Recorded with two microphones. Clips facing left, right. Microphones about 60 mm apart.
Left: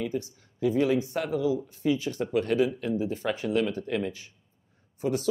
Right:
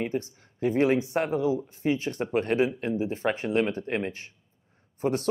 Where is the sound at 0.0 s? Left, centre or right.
Right.